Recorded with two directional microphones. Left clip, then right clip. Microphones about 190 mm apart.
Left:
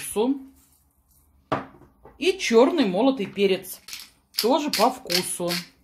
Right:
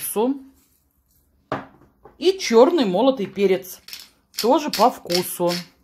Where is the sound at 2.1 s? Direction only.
25° right (ahead or behind).